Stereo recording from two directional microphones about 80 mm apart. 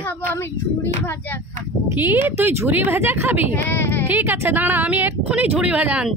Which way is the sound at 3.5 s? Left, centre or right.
Left.